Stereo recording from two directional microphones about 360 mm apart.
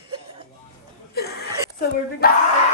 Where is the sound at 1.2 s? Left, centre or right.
Left.